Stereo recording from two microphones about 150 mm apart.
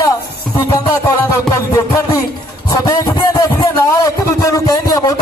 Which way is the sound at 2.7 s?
25° left (ahead or behind).